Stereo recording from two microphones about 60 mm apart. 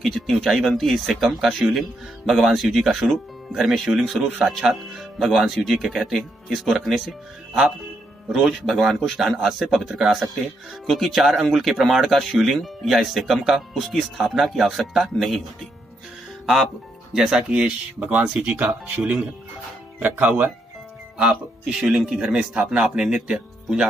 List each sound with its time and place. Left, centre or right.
0.0 s speech: centre
17.1 s speech: centre
17.4 s speech: centre
17.9 s speech: right
18.2 s speech: centre
20.0 s speech: right
21.2 s speech: centre